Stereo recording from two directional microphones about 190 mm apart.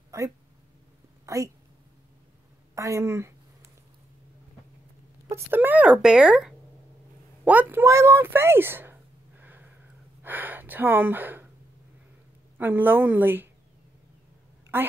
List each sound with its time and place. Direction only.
0.1 s a sound: 15° right (ahead or behind)
2.7 s speech: 15° right (ahead or behind)
5.3 s speech: 10° right (ahead or behind)
9.4 s a sound: 10° right (ahead or behind)
10.2 s speech: 10° right (ahead or behind)
12.5 s speech: 10° right (ahead or behind)
14.7 s a woman's voice: 10° right (ahead or behind)